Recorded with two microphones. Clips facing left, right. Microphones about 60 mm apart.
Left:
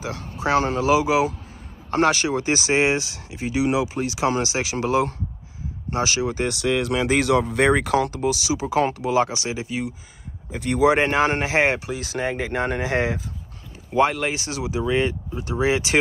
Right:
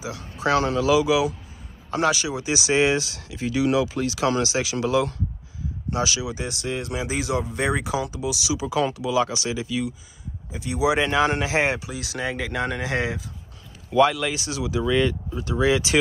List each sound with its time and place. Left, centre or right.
0.4 s speech: left
6.5 s speech: left
10.5 s speech: left